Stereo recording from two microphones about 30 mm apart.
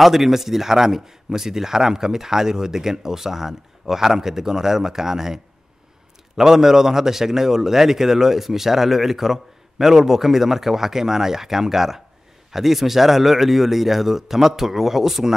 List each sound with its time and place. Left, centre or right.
0.0 s a man's voice: centre